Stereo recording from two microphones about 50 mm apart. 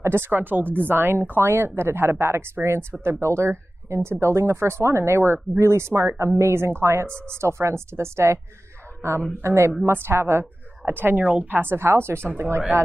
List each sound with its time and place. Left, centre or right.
0.0 s a woman's voice: right
9.8 s a woman's voice: right